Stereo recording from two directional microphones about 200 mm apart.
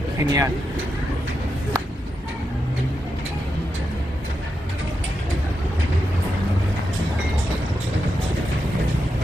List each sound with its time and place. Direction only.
0.2 s speech: 15° right (ahead or behind)